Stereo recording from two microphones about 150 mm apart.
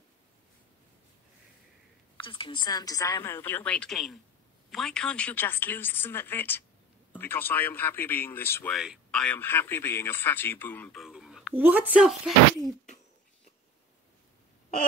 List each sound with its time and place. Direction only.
2.1 s a man's voice: 35° left (ahead or behind); by 8.7 s 15° left (ahead or behind)
8.7 s a man's voice: centre (ahead or behind)
11.0 s speech: 5° right (ahead or behind)